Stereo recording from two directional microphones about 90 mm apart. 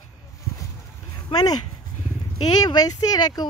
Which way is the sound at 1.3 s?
45° left (ahead or behind).